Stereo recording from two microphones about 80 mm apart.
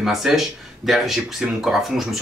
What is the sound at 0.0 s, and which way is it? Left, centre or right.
Speech, centre.